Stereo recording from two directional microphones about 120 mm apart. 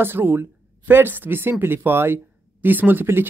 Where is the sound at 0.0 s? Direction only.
15° right (ahead or behind).